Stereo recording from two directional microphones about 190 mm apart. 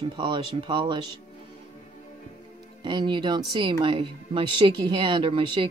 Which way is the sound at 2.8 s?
25° right (ahead or behind).